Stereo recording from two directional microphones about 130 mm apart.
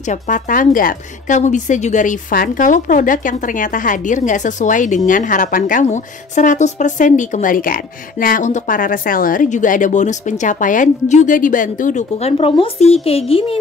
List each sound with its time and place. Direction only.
0.0 s a woman's voice: 75° left (ahead or behind); by 13.6 s 45° left (ahead or behind)